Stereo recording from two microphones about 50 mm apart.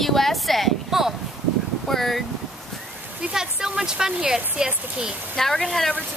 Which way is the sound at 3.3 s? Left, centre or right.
Centre.